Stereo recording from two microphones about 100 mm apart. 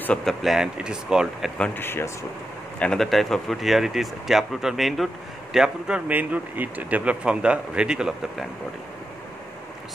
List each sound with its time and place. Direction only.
0.2 s speech: centre (ahead or behind)
1.8 s speech: 25° left (ahead or behind)
2.8 s speech: 5° left (ahead or behind)